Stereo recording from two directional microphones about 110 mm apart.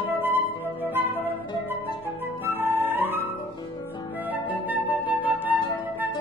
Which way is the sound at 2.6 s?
20° right (ahead or behind).